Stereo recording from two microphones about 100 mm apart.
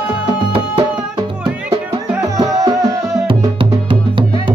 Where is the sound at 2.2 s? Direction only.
35° right (ahead or behind).